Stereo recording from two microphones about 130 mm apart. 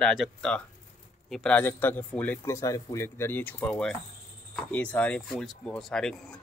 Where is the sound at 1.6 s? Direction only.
15° left (ahead or behind).